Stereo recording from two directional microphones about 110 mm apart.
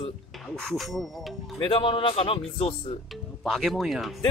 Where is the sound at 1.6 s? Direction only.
50° left (ahead or behind).